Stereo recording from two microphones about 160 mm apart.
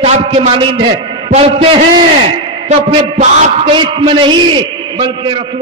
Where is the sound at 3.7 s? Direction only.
30° right (ahead or behind).